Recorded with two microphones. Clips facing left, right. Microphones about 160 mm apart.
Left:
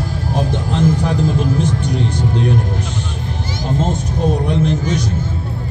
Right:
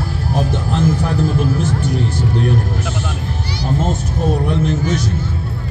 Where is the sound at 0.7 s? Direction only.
15° left (ahead or behind).